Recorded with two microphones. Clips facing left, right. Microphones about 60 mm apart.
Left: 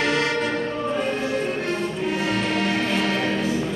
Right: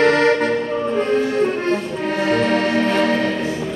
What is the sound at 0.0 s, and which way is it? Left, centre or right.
Music, right.